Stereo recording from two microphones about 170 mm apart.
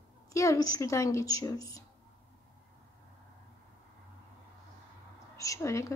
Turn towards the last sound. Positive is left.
turn(degrees=15)  # may be behind; listen again after turning